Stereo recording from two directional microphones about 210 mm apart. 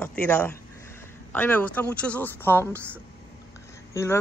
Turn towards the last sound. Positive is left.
turn(degrees=15)  # may be behind; listen again after turning